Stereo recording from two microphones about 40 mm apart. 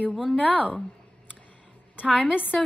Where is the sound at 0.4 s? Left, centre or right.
Left.